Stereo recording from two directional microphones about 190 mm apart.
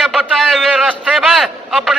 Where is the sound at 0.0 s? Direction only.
Centre (ahead or behind).